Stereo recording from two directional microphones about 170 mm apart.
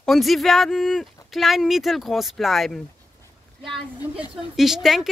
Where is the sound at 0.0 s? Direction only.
Centre (ahead or behind).